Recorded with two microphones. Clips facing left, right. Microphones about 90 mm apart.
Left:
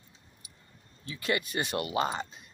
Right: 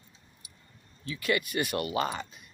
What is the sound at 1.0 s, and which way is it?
Speech, 30° left (ahead or behind).